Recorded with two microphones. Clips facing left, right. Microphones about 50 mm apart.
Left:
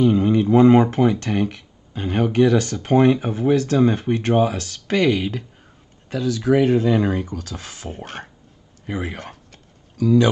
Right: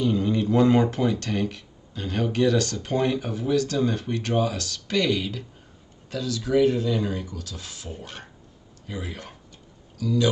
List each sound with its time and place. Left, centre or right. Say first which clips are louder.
0.0 s speech: left 7 dB; left